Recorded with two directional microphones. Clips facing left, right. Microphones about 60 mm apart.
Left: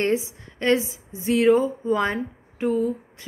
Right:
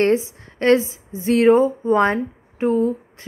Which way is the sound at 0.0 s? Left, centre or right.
Right.